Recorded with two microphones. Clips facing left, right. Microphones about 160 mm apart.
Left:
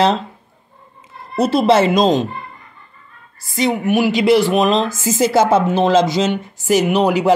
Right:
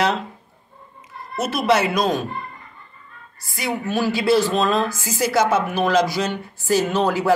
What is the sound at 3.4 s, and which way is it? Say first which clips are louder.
Speech: left 8 dB; 20° left (ahead or behind).